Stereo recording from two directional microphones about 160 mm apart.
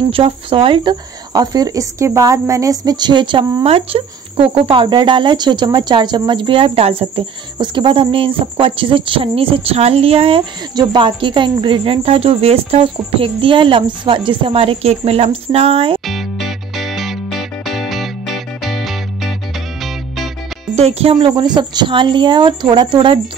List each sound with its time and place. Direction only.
0.1 s a woman's voice: 35° right (ahead or behind)
16.1 s music: centre (ahead or behind)
20.7 s a woman's voice: 40° right (ahead or behind)